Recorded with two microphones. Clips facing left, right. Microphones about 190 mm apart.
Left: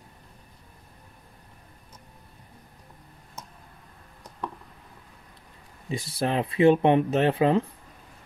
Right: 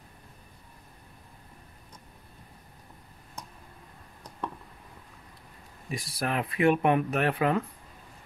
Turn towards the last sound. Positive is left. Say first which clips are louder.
# left 5 dB
turn(degrees=25)  # may be behind; listen again after turning